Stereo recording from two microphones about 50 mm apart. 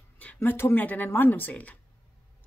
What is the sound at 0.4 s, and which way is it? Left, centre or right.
Speech, left.